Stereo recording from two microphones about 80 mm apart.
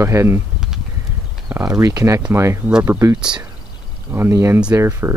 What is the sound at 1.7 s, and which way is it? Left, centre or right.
Speech, right.